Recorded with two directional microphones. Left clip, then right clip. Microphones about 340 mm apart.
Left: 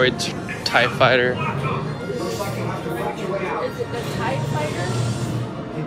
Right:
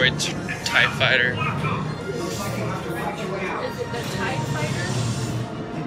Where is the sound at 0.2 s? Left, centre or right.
Centre.